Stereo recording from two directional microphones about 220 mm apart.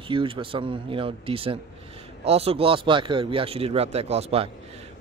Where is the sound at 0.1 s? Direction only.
25° right (ahead or behind).